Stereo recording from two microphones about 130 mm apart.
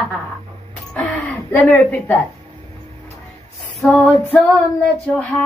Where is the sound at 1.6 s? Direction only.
20° left (ahead or behind).